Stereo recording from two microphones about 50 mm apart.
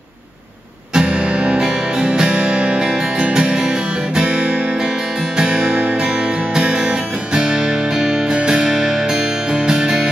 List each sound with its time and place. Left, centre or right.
0.9 s music: right